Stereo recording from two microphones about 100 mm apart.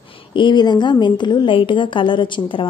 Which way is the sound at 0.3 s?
50° left (ahead or behind).